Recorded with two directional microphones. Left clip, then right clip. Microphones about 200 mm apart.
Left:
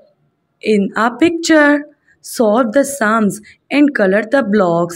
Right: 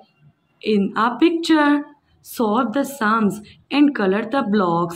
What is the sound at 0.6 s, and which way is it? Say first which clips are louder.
A woman's voice: left 5 dB; 30° left (ahead or behind).